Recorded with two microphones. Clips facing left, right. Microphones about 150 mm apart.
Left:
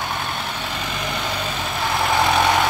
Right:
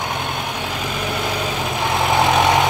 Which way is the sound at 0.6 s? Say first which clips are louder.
Right 3 dB; 10° right (ahead or behind).